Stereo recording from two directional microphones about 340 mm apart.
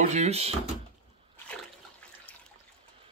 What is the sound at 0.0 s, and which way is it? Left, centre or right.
Speech, centre.